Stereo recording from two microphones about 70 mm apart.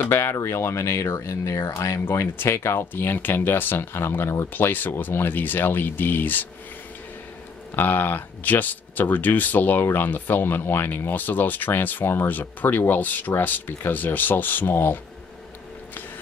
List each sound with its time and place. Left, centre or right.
0.0 s speech: left
7.7 s speech: left